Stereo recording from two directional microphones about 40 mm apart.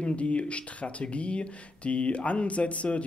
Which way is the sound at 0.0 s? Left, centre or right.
Left.